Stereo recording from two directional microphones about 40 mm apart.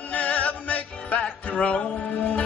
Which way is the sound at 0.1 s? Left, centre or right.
Left.